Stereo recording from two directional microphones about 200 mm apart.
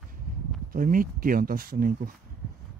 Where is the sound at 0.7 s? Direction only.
45° right (ahead or behind).